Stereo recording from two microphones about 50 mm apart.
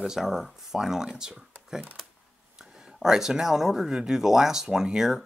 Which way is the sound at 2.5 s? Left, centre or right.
Centre.